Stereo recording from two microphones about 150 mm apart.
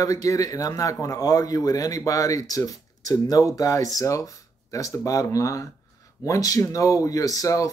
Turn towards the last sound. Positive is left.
turn(degrees=20)  # may be behind; listen again after turning